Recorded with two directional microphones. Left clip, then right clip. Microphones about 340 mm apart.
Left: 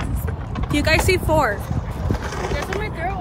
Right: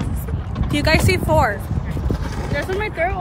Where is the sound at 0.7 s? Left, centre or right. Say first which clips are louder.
Even; centre.